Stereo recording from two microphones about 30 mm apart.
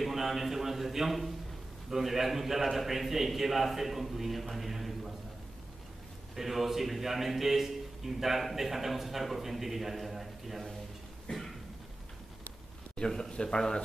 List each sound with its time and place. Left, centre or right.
0.0 s a man's voice: centre
6.3 s a man's voice: centre
13.3 s speech: left